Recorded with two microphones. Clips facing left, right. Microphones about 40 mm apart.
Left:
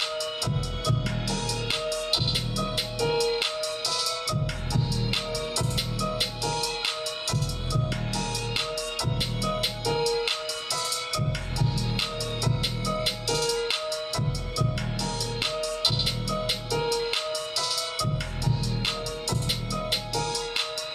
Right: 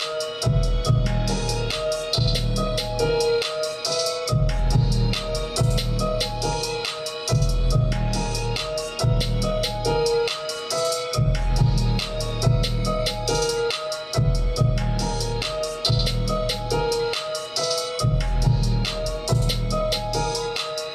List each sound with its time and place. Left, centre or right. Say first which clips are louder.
0.2 s music: right 5 dB; left
3.6 s music: right 5 dB; left
8.7 s music: right 5 dB; left
13.0 s music: right 5 dB; left
15.4 s music: even; left
19.2 s music: right 5 dB; left